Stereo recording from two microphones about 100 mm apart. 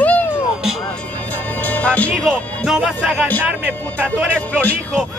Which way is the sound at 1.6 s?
15° left (ahead or behind).